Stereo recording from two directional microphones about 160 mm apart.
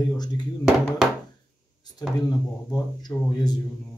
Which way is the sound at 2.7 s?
25° left (ahead or behind).